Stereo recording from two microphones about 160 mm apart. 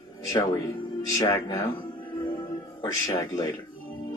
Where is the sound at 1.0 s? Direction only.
20° left (ahead or behind).